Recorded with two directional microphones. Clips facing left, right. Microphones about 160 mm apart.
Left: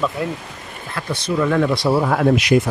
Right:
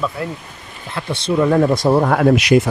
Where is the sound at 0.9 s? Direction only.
25° right (ahead or behind); by 2.6 s 80° right.